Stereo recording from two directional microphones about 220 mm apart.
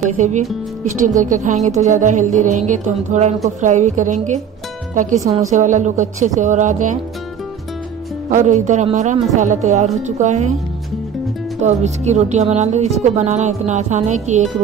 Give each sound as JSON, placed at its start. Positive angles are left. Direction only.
{"t": 0.0, "sound": "speech", "side_deg": -30}
{"t": 5.5, "sound": "speech", "side_deg": -35}
{"t": 8.3, "sound": "speech", "side_deg": -35}
{"t": 11.6, "sound": "speech", "side_deg": -30}